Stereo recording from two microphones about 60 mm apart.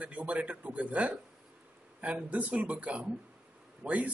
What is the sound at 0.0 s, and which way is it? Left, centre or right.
Speech, right.